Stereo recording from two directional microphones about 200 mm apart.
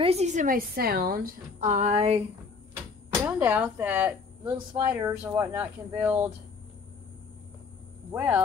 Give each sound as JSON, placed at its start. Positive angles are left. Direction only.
{"t": 0.0, "sound": "a woman's voice", "side_deg": -30}
{"t": 3.3, "sound": "speech", "side_deg": -10}
{"t": 8.1, "sound": "speech", "side_deg": -10}